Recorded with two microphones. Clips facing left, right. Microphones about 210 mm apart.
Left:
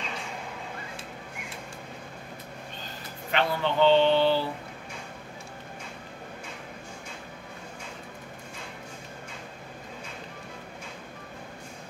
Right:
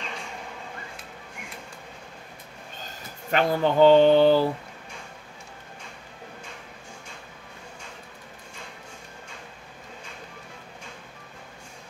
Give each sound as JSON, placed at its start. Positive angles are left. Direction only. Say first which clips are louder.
{"t": 3.3, "sound": "speech", "louder": "right 5 dB", "side_deg": -45}